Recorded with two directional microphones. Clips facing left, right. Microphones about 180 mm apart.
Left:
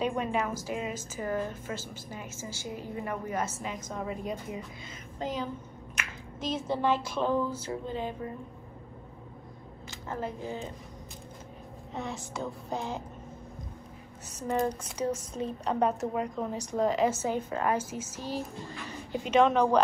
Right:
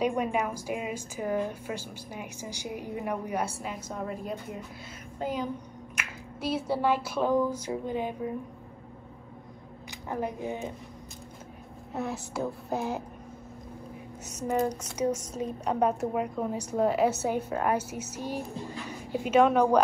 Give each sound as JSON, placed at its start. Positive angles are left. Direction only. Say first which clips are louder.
{"t": 0.0, "sound": "a woman's voice", "louder": "right 2 dB", "side_deg": -10}
{"t": 9.8, "sound": "a woman's voice", "louder": "right 3 dB", "side_deg": -15}
{"t": 11.9, "sound": "a woman's voice", "louder": "right 4 dB", "side_deg": -5}
{"t": 15.3, "sound": "a woman's voice", "louder": "right 1 dB", "side_deg": -10}